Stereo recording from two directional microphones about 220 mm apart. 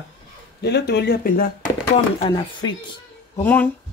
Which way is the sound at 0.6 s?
50° left (ahead or behind).